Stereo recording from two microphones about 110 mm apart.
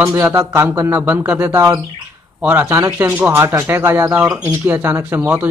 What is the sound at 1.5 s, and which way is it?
Speech, 30° right (ahead or behind).